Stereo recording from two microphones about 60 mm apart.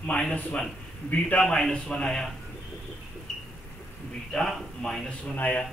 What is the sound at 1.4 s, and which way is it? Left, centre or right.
Speech, centre.